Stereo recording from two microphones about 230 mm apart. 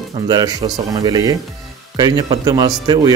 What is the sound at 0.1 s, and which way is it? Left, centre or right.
Speech, centre.